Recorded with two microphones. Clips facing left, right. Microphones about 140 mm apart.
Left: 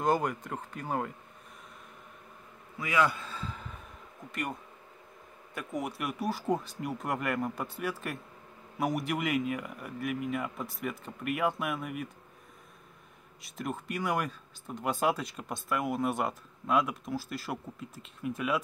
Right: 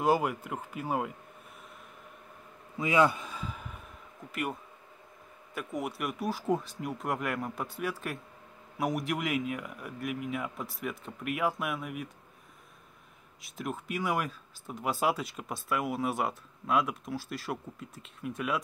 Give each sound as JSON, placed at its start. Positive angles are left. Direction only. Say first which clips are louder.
{"t": 0.0, "sound": "speech", "louder": "right 1 dB", "side_deg": -5}
{"t": 2.8, "sound": "a man's voice", "louder": "right 3 dB", "side_deg": -25}
{"t": 13.4, "sound": "speech", "louder": "even", "side_deg": 0}